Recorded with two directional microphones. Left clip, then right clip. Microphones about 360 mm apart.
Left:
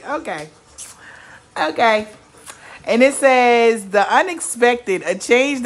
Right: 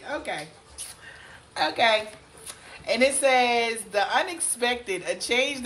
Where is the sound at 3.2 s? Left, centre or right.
Left.